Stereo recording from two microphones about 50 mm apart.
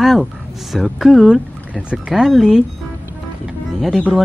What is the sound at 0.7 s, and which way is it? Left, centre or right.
Speech, centre.